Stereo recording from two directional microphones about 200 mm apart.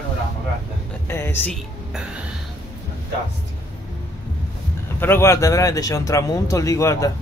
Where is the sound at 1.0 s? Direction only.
10° left (ahead or behind).